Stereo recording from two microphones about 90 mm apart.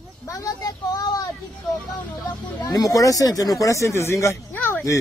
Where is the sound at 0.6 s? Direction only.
45° left (ahead or behind).